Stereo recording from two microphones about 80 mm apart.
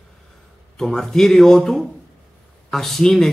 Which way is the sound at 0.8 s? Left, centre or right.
Centre.